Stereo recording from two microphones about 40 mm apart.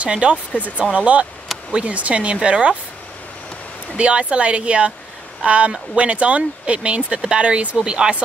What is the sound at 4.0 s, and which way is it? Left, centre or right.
A woman's voice, right.